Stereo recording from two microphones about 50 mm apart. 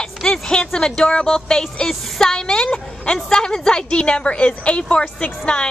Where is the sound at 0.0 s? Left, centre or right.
Centre.